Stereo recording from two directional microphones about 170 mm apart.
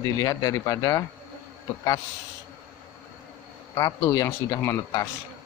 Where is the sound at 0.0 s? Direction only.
20° left (ahead or behind).